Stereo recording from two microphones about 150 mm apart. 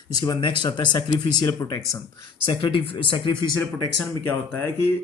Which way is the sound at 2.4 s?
35° left (ahead or behind).